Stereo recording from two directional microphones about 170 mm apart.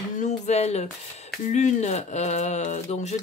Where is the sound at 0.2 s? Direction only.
40° left (ahead or behind).